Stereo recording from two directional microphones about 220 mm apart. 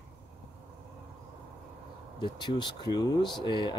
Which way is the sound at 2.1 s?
20° left (ahead or behind).